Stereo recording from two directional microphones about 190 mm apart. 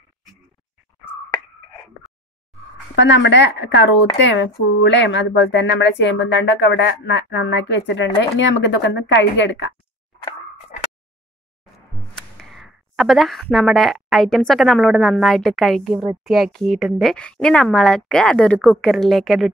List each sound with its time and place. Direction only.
3.0 s speech: 75° left (ahead or behind)
12.2 s speech: centre (ahead or behind)